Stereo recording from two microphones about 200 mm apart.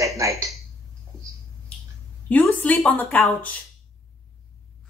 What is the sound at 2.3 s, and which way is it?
Speech, 10° left (ahead or behind).